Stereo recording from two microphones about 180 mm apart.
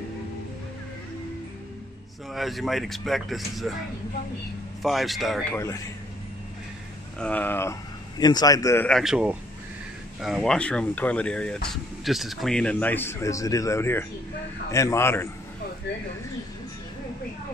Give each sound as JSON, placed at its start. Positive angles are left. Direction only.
{"t": 2.3, "sound": "speech", "side_deg": 0}
{"t": 4.8, "sound": "speech", "side_deg": 0}
{"t": 7.2, "sound": "speech", "side_deg": 10}
{"t": 8.2, "sound": "a man's voice", "side_deg": 20}
{"t": 8.8, "sound": "speech", "side_deg": 0}